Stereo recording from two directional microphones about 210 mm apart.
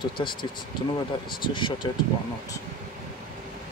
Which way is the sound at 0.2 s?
25° left (ahead or behind).